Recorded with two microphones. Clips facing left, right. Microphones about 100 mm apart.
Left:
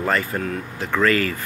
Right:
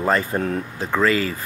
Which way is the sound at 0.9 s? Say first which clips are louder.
Even; 20° right (ahead or behind).